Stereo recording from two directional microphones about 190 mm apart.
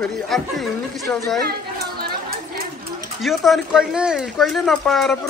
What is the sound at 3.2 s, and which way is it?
Speech, centre (ahead or behind).